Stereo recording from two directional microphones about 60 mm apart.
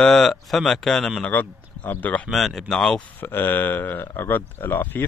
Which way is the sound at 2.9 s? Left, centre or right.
Left.